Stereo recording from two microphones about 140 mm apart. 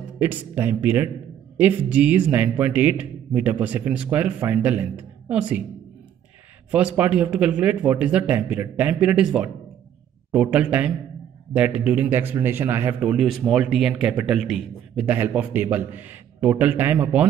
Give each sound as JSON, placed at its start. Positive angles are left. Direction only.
{"t": 0.2, "sound": "a man's voice", "side_deg": -15}
{"t": 6.7, "sound": "a man's voice", "side_deg": -10}
{"t": 13.0, "sound": "a man's voice", "side_deg": -5}